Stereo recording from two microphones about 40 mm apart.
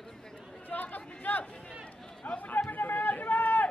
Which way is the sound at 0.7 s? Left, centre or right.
Left.